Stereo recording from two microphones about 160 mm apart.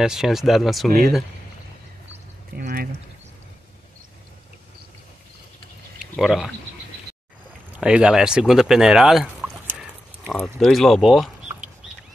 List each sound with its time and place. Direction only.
0.0 s speech: 5° right (ahead or behind)
2.5 s a sound: 65° right (ahead or behind)
6.1 s speech: centre (ahead or behind)
7.7 s speech: 5° right (ahead or behind)
9.7 s a sound: 10° right (ahead or behind)
10.4 s speech: centre (ahead or behind)